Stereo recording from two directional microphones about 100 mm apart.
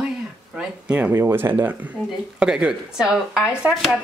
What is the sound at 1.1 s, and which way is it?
Speech, 20° right (ahead or behind).